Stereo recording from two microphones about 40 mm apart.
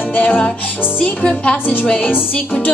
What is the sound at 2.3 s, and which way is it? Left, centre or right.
Music, left.